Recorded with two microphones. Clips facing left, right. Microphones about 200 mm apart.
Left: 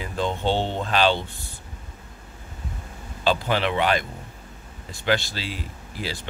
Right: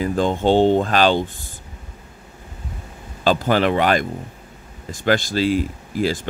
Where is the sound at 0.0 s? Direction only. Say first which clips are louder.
Right 7 dB; 45° right (ahead or behind).